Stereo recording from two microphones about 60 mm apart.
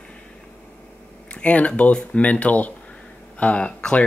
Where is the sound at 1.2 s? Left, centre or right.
Left.